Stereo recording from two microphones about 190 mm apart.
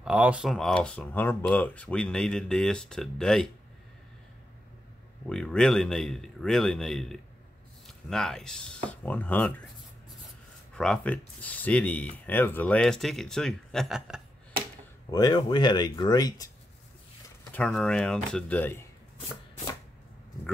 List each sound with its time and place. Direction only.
0.0 s speech: 5° right (ahead or behind)
5.2 s speech: 5° left (ahead or behind)
10.7 s speech: 5° left (ahead or behind)
15.0 s speech: 20° left (ahead or behind)
17.5 s speech: 5° left (ahead or behind)